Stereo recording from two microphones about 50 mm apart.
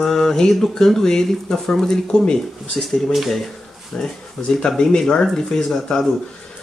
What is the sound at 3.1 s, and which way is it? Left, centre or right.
Speech, centre.